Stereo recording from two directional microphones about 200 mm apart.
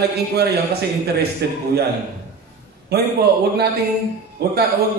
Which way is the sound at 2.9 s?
55° right (ahead or behind).